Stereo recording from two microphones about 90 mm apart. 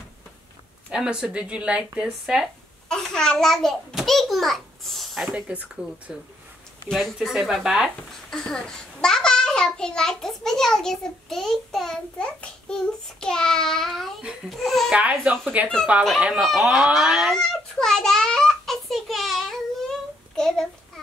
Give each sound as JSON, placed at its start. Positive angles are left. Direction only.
{"t": 0.9, "sound": "a child's voice", "side_deg": -10}
{"t": 2.9, "sound": "a child's voice", "side_deg": 5}
{"t": 6.9, "sound": "a child's voice", "side_deg": 5}
{"t": 8.3, "sound": "a child's voice", "side_deg": 5}
{"t": 14.9, "sound": "speech", "side_deg": -15}
{"t": 16.3, "sound": "a sound", "side_deg": -5}